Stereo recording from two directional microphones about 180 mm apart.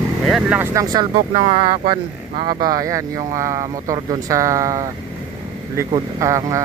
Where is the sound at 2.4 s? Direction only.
50° right (ahead or behind).